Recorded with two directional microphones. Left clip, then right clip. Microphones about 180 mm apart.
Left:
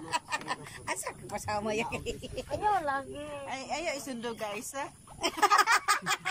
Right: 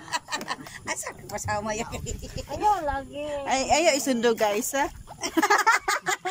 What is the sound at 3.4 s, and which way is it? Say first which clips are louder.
Speech: right 15 dB; 60° right (ahead or behind).